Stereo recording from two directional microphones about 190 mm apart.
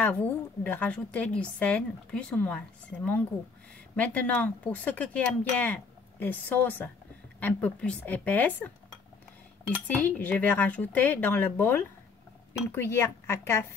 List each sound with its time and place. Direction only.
0.0 s speech: 10° left (ahead or behind)
9.8 s speech: 10° left (ahead or behind)